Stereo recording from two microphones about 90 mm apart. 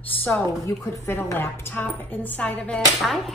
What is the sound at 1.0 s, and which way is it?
A woman's voice, 25° left (ahead or behind).